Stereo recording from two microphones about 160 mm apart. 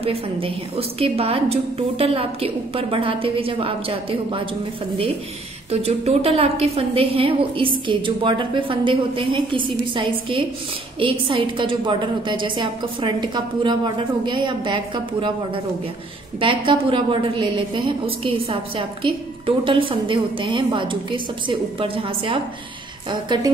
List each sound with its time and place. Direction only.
0.0 s a woman's voice: 35° right (ahead or behind)
5.7 s a woman's voice: 40° right (ahead or behind)